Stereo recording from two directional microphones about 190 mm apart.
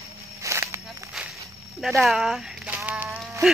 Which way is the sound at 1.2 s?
Centre (ahead or behind).